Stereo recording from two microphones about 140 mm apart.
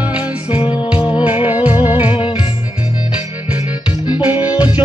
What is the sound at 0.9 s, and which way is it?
Music, 35° left (ahead or behind).